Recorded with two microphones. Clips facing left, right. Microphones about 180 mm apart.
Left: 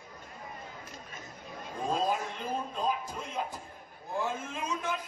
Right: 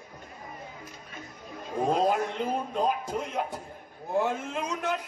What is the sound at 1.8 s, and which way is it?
Speech, 60° right (ahead or behind).